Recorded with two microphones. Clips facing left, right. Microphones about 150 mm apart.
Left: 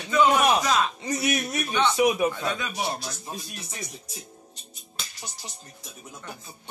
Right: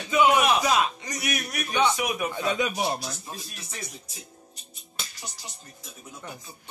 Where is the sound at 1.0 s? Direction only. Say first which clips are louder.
Left 5 dB; 25° left (ahead or behind).